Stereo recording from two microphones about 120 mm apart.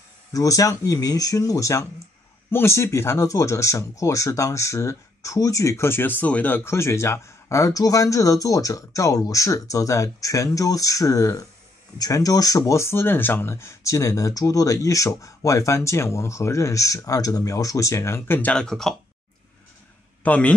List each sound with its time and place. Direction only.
0.3 s speech: 30° left (ahead or behind); by 18.9 s 5° left (ahead or behind)
20.2 s a man's voice: 10° left (ahead or behind)